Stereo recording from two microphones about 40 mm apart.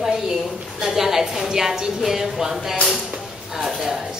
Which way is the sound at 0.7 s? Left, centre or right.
Centre.